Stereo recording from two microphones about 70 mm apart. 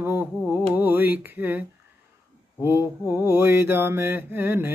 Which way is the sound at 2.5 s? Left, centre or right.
Right.